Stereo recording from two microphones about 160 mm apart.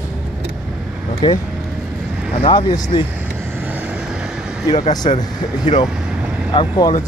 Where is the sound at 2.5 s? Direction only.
25° left (ahead or behind).